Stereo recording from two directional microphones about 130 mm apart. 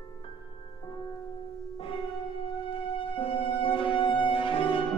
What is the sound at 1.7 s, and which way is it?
Music, 45° left (ahead or behind).